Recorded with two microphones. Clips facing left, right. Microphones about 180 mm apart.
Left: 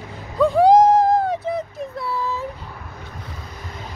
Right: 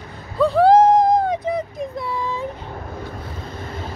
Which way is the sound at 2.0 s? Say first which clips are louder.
Left 2 dB; 5° left (ahead or behind).